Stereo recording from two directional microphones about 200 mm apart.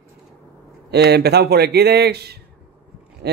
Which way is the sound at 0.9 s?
55° right (ahead or behind).